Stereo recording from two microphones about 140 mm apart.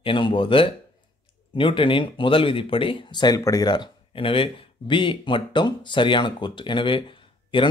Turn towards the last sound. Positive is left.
turn(degrees=35)  # may be behind; listen again after turning